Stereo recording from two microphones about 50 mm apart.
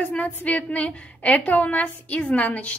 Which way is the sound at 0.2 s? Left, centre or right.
Left.